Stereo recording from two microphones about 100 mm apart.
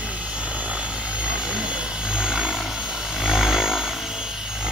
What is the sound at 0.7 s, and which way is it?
Vehicle, 10° right (ahead or behind).